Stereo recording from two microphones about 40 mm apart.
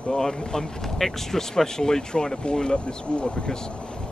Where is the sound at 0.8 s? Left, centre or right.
Centre.